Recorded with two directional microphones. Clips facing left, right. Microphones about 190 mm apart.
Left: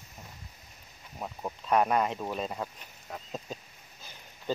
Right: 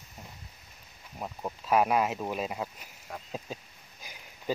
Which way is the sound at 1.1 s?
5° right (ahead or behind).